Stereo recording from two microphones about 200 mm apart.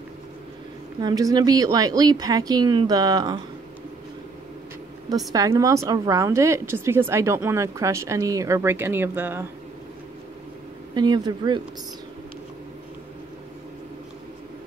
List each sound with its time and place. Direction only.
1.0 s speech: 20° right (ahead or behind)
5.3 s speech: 15° right (ahead or behind)
11.0 s speech: 20° right (ahead or behind)